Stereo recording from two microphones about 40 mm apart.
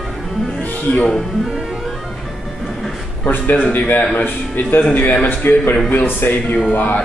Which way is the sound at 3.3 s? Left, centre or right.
Left.